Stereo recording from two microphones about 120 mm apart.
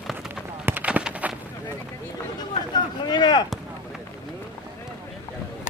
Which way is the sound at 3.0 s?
35° left (ahead or behind).